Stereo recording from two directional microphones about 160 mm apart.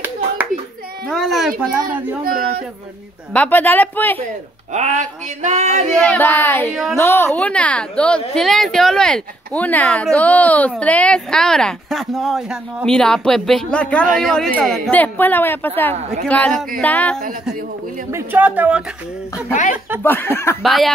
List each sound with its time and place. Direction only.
1.0 s a sound: centre (ahead or behind)
2.2 s speech: 65° right (ahead or behind)
3.3 s a woman's voice: 10° left (ahead or behind)
4.7 s a sound: 50° right (ahead or behind)
5.9 s a woman's voice: 10° left (ahead or behind)
6.7 s speech: centre (ahead or behind)
7.0 s a woman's voice: 15° left (ahead or behind)
18.1 s speech: 10° right (ahead or behind)
19.5 s speech: 50° left (ahead or behind)
20.0 s a woman's voice: 15° left (ahead or behind)
20.6 s speech: centre (ahead or behind)